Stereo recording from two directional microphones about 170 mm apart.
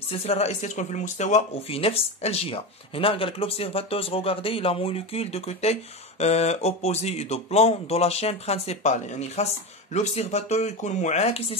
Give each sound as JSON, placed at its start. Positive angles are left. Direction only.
{"t": 0.1, "sound": "speech", "side_deg": 35}